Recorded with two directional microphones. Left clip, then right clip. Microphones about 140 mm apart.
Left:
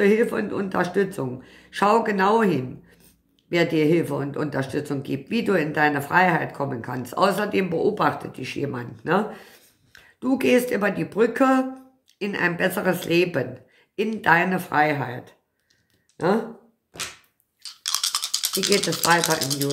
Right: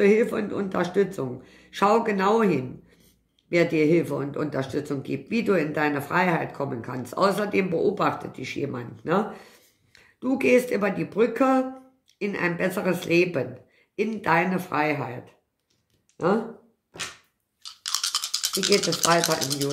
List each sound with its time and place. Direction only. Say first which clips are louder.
0.0 s speech: left 1 dB; 20° left (ahead or behind)
17.8 s toothbrush: left 2 dB; 15° left (ahead or behind)
18.6 s speech: even; 15° left (ahead or behind)